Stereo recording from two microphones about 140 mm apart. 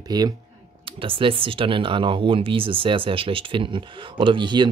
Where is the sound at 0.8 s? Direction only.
40° right (ahead or behind).